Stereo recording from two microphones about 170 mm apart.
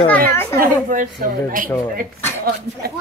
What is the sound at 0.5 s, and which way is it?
A woman's voice, 55° right (ahead or behind).